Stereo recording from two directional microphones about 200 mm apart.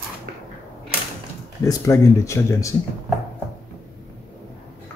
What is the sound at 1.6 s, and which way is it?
Speech, 15° left (ahead or behind).